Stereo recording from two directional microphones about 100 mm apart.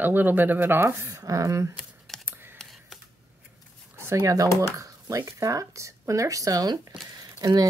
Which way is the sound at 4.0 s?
30° right (ahead or behind).